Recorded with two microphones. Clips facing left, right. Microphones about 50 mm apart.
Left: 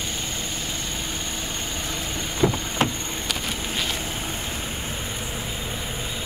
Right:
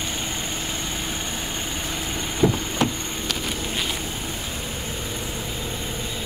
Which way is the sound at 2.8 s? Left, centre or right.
Left.